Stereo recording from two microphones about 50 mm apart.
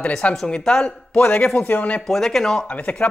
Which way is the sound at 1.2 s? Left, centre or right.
Left.